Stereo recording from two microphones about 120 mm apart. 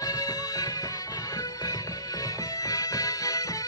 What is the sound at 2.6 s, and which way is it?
Music, 30° left (ahead or behind).